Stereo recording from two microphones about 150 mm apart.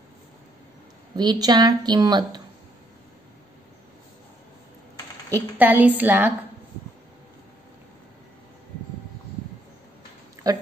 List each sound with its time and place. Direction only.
1.1 s speech: 25° right (ahead or behind)
5.3 s a woman's voice: 10° right (ahead or behind)